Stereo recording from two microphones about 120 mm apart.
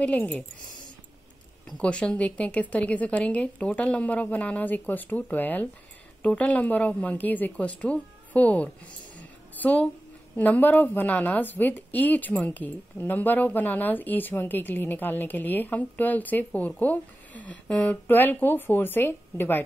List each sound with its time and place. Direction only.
0.0 s a woman's voice: 10° left (ahead or behind)
1.7 s a woman's voice: 10° left (ahead or behind)